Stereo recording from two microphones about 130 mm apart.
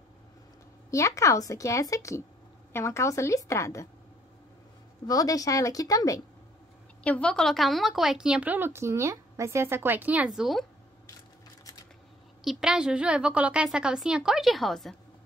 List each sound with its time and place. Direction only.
0.8 s a woman's voice: 25° left (ahead or behind)
5.0 s a woman's voice: 25° left (ahead or behind)
7.0 s a woman's voice: 10° left (ahead or behind)
12.4 s a woman's voice: 5° right (ahead or behind)